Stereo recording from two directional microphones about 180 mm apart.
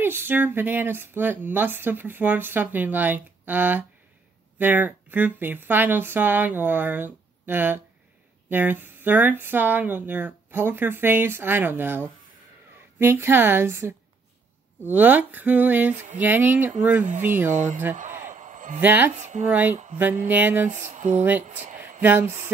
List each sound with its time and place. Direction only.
0.0 s speech: 10° right (ahead or behind)
17.5 s speech: 45° right (ahead or behind)
17.9 s a sound: 45° right (ahead or behind)
18.8 s speech: 10° right (ahead or behind)
19.1 s a sound: 40° right (ahead or behind)
19.5 s speech: 10° right (ahead or behind)
20.7 s a sound: 40° right (ahead or behind)
21.2 s speech: 10° right (ahead or behind)
21.5 s speech: 40° right (ahead or behind)
22.0 s speech: 10° right (ahead or behind)